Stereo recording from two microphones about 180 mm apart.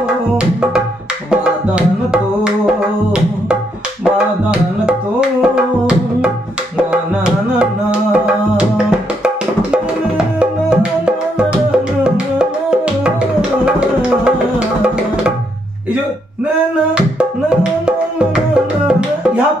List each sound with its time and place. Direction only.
0.4 s music: 5° right (ahead or behind)
2.4 s music: 5° right (ahead or behind)
7.5 s music: 5° right (ahead or behind)
10.1 s music: 5° right (ahead or behind)
16.9 s music: 5° right (ahead or behind)